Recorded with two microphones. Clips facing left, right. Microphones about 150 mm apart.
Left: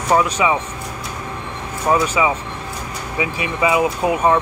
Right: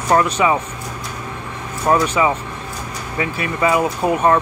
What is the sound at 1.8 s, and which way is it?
Speech, 5° left (ahead or behind).